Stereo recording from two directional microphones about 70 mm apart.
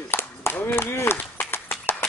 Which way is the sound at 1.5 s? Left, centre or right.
Left.